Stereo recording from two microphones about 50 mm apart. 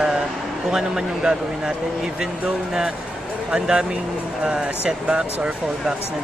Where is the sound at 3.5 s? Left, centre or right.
Centre.